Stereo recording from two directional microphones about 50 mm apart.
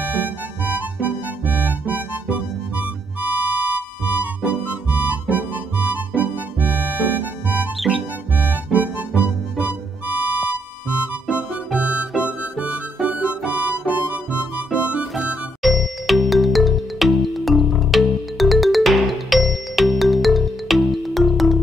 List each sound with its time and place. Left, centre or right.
0.0 s music: right
8.7 s music: right
11.2 s music: right
12.6 s music: centre
13.5 s harmonica: right
15.6 s music: centre